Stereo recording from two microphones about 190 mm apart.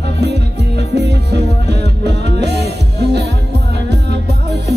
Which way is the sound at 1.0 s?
60° right (ahead or behind).